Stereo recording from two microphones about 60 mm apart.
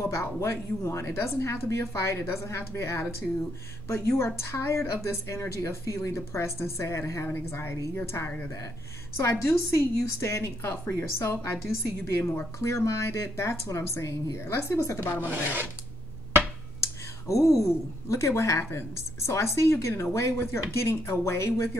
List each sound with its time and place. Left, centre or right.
0.0 s a woman's voice: left
7.2 s a woman's voice: left
9.5 s a woman's voice: left
14.8 s a woman's voice: left
15.2 s filing: right
17.3 s a woman's voice: left